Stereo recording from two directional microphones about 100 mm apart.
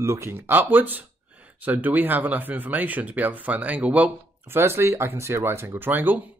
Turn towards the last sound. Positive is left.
turn(degrees=-20)  # may be behind; listen again after turning